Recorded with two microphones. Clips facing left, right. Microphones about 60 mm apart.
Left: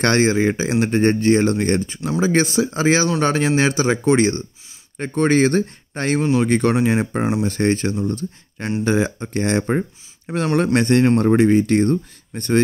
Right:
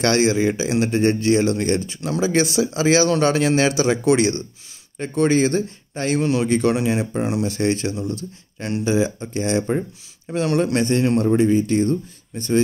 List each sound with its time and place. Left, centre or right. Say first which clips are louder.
0.0 s speech: left 1 dB; left
2.0 s speech: left 2 dB; left
2.2 s speech: left 1 dB; left
6.2 s speech: left 3 dB; left
6.5 s speech: left 2 dB; left
8.8 s speech: even; left
9.7 s speech: left 2 dB; left
10.3 s speech: left 2 dB; left
11.3 s speech: left 2 dB; left